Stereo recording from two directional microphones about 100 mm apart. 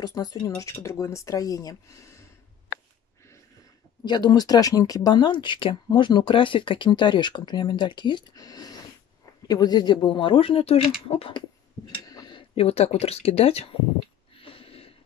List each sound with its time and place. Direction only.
0.0 s speech: 40° left (ahead or behind)
4.0 s speech: 45° left (ahead or behind)
5.3 s speech: 55° left (ahead or behind); by 11.3 s 85° left
12.1 s a sound: 45° left (ahead or behind)
12.5 s speech: 90° left
14.3 s a sound: 65° left (ahead or behind)